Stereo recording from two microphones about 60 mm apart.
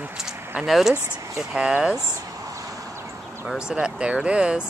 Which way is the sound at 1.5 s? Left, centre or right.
Centre.